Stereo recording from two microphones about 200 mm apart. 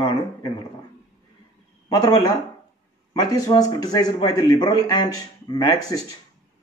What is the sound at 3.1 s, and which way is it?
A man's voice, 20° left (ahead or behind).